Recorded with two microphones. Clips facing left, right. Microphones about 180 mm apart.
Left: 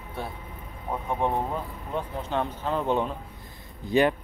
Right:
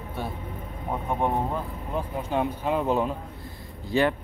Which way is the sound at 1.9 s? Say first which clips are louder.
Right 1 dB; 10° right (ahead or behind).